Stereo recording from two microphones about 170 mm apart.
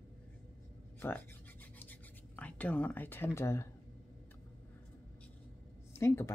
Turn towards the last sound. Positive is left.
turn(degrees=15)  # may be behind; listen again after turning